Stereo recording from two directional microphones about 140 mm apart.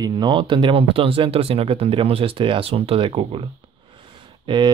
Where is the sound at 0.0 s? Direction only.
30° right (ahead or behind).